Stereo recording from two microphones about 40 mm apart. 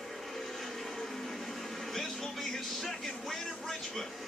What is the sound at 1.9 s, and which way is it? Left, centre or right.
Speech, centre.